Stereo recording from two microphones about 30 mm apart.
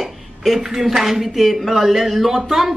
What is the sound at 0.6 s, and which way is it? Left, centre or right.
Speech, centre.